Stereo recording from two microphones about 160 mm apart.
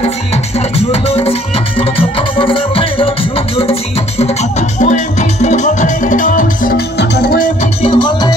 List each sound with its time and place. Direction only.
0.3 s music: 40° left (ahead or behind); by 7.4 s 80° left
7.6 s music: 35° left (ahead or behind)